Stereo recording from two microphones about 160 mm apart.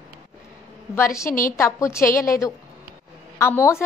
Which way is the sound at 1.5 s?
20° left (ahead or behind).